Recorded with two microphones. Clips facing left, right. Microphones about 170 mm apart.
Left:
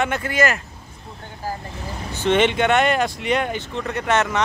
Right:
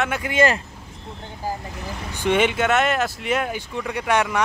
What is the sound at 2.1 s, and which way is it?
Speech, 10° right (ahead or behind).